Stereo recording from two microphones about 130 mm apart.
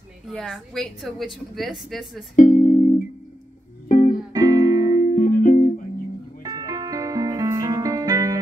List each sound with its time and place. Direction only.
0.3 s a woman's voice: 5° left (ahead or behind)
2.3 s music: 75° left (ahead or behind)
3.9 s music: 75° left (ahead or behind)
4.3 s music: 25° right (ahead or behind)
5.1 s music: 90° left
6.4 s music: 30° right (ahead or behind)